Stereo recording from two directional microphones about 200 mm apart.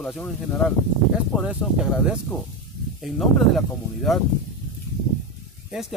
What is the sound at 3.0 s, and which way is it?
Speech, centre (ahead or behind).